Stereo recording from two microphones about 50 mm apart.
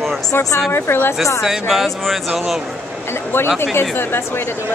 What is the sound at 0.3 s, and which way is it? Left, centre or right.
Speech, left.